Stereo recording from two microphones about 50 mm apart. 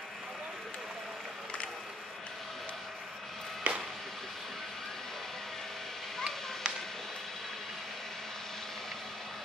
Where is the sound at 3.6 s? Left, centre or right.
Right.